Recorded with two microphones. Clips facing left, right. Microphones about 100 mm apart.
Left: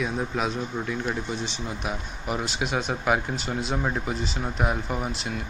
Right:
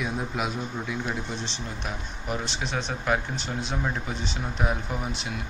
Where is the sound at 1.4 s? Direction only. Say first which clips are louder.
Left 3 dB; 5° left (ahead or behind).